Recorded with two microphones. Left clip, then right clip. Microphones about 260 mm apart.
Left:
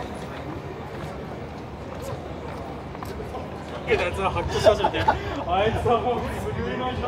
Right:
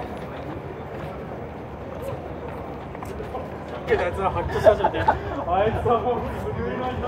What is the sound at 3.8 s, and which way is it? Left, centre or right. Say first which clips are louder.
Speech: right 1 dB; centre.